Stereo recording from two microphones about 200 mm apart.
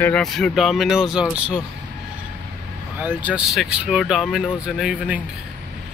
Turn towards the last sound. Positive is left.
turn(degrees=-5)  # may be behind; listen again after turning